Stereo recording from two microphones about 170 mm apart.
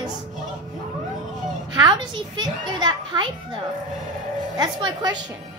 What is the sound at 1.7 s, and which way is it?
A woman's voice, 25° right (ahead or behind).